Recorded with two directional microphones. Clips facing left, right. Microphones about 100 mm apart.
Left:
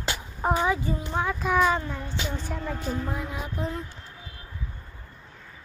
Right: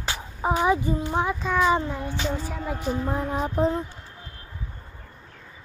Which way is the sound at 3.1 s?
35° right (ahead or behind).